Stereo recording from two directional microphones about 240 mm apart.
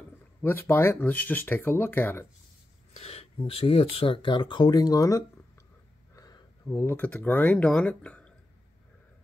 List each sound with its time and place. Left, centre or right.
0.4 s speech: centre
2.9 s speech: left; by 8.3 s centre